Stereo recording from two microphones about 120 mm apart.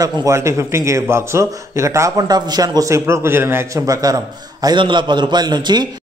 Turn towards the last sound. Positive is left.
turn(degrees=-40)  # may be behind; listen again after turning